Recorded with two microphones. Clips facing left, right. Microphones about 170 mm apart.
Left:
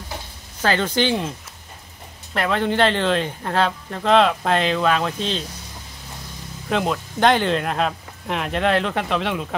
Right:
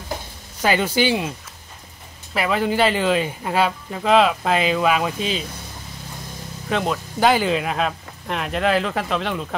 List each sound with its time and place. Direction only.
0.6 s speech: 10° right (ahead or behind)
2.3 s speech: 5° right (ahead or behind)
6.7 s speech: centre (ahead or behind)